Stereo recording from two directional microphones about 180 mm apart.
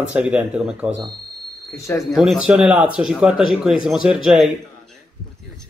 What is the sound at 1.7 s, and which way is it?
Speech, 15° left (ahead or behind).